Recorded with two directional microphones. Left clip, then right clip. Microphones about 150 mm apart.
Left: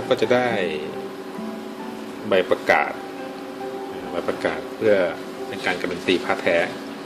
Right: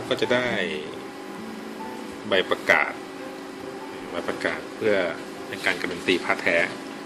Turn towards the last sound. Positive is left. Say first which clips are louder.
# left 2 dB
turn(degrees=10)  # may be behind; listen again after turning